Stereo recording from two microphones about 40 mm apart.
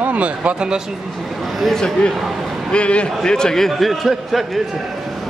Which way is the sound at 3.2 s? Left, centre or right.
Centre.